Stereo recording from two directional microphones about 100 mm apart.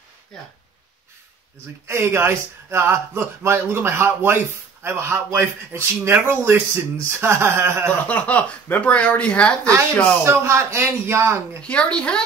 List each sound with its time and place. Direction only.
1.9 s speech: 25° right (ahead or behind)
8.1 s speech: 15° left (ahead or behind)
10.2 s speech: 25° right (ahead or behind)
11.6 s speech: 10° left (ahead or behind)